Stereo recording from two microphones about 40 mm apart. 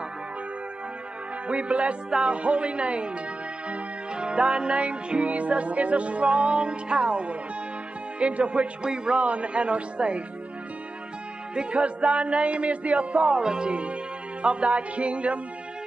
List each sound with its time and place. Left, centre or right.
1.5 s music: right
4.1 s music: right
8.2 s speech: right
8.8 s music: right
11.5 s music: right